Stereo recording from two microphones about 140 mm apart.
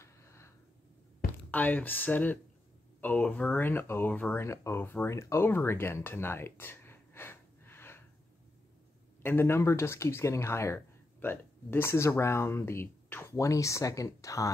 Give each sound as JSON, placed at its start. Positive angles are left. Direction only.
{"t": 0.0, "sound": "a sound", "side_deg": 20}
{"t": 1.5, "sound": "speech", "side_deg": 10}
{"t": 9.2, "sound": "speech", "side_deg": 15}